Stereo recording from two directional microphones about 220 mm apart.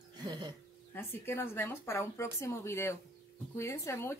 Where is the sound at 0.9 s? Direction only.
10° left (ahead or behind).